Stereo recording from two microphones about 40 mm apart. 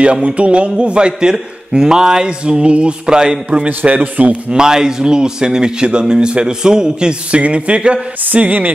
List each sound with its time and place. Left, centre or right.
0.0 s speech: right
3.6 s a man's voice: right
4.5 s speech: centre
8.2 s speech: right